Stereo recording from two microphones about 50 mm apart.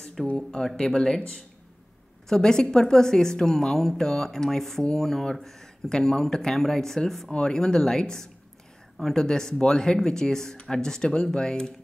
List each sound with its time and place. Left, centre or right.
0.5 s speech: centre